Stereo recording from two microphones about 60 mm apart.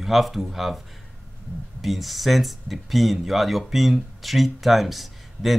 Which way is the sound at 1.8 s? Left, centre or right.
Centre.